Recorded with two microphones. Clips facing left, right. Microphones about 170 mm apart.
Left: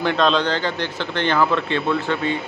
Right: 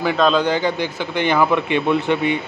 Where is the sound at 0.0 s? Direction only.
5° right (ahead or behind).